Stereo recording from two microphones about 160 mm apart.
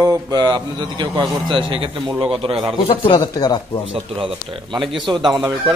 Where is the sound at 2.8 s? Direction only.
30° left (ahead or behind).